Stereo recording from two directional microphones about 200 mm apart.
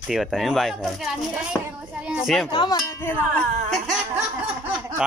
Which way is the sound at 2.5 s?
20° left (ahead or behind).